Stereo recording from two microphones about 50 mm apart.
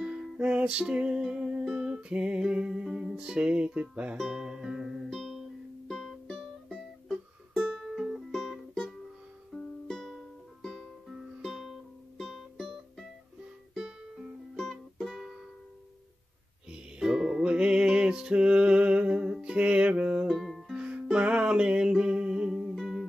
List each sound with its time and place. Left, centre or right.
0.0 s music: right
2.8 s music: centre
3.2 s music: centre
4.4 s music: centre
5.1 s music: centre
8.3 s music: centre
11.1 s music: centre
13.8 s music: centre
14.6 s music: centre
16.7 s music: centre
20.2 s music: centre
20.7 s music: right
22.8 s music: centre